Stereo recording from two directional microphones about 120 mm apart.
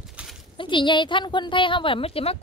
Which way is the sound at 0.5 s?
40° left (ahead or behind).